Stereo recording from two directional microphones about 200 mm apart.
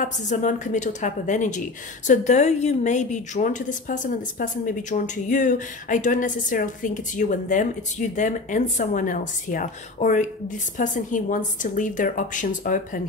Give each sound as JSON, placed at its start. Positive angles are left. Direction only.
{"t": 0.0, "sound": "a woman's voice", "side_deg": 40}